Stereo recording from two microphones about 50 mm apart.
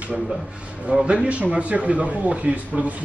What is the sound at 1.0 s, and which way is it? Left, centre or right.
Speech, right.